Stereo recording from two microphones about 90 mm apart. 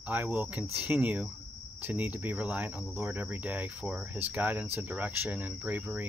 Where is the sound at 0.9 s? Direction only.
15° right (ahead or behind).